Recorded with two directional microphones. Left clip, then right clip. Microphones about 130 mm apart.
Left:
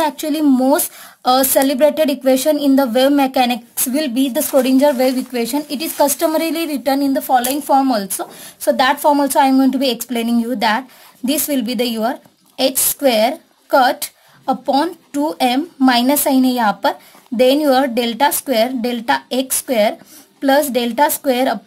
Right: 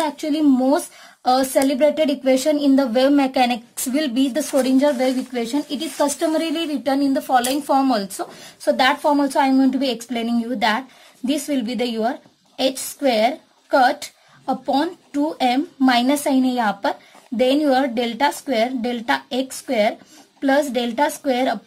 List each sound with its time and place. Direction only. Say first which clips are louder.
0.0 s a woman's voice: left 3 dB; 40° left (ahead or behind)
4.6 s speech: left 4 dB; 50° left (ahead or behind); by 7.2 s 30° left (ahead or behind)
7.2 s speech: left 4 dB; 15° left (ahead or behind)
8.6 s a woman's voice: left 4 dB; 40° left (ahead or behind)